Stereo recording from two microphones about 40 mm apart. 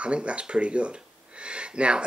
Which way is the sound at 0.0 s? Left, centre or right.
Right.